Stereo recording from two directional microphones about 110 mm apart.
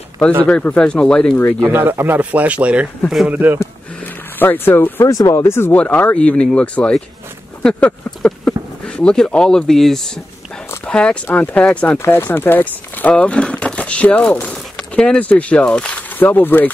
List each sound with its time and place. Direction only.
0.5 s speech: 10° left (ahead or behind)
1.7 s speech: 20° right (ahead or behind)
3.5 s speech: 15° left (ahead or behind)
5.0 s speech: 30° left (ahead or behind)